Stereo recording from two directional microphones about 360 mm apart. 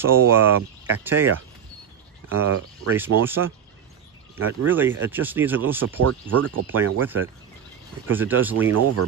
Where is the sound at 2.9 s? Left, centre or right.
Centre.